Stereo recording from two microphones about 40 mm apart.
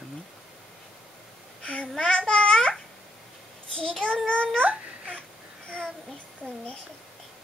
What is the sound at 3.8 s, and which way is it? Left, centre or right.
Speech, left.